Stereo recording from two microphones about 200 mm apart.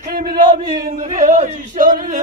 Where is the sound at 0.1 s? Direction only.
50° right (ahead or behind).